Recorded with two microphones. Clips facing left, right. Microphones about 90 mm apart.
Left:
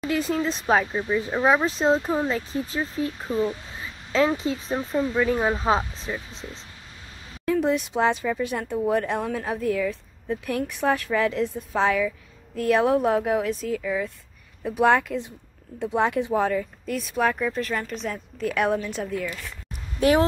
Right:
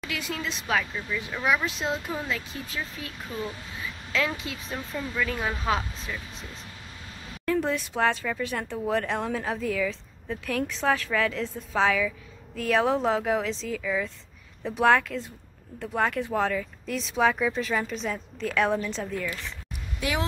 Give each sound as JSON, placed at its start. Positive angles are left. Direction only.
{"t": 0.0, "sound": "speech", "side_deg": 35}
{"t": 7.6, "sound": "a woman's voice", "side_deg": 15}
{"t": 20.0, "sound": "speech", "side_deg": 40}